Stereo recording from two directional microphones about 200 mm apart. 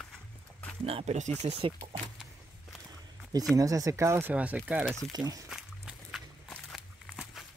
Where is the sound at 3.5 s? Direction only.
15° right (ahead or behind).